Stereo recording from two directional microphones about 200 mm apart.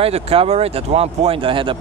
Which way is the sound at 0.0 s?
30° right (ahead or behind).